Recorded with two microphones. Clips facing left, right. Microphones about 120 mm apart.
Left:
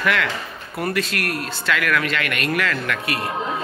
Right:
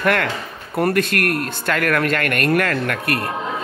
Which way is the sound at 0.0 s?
50° right (ahead or behind).